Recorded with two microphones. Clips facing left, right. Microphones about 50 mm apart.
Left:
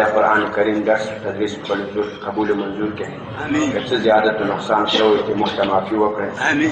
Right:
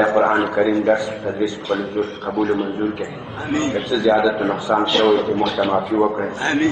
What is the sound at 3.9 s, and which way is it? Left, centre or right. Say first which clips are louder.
A man's voice: left 1 dB; centre.